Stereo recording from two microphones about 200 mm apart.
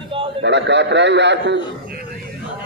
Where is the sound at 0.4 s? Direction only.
60° right (ahead or behind).